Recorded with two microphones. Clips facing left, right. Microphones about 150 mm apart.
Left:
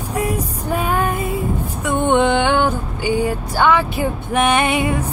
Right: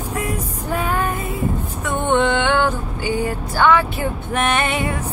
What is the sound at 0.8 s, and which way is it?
Female singing, 15° left (ahead or behind).